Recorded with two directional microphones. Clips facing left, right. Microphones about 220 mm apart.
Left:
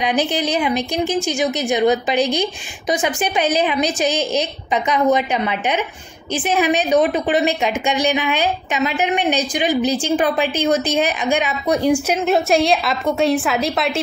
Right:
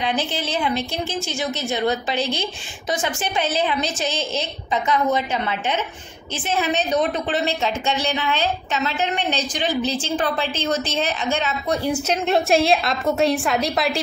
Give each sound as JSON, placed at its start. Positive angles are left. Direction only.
{"t": 0.0, "sound": "a woman's voice", "side_deg": 15}
{"t": 12.3, "sound": "a woman's voice", "side_deg": 0}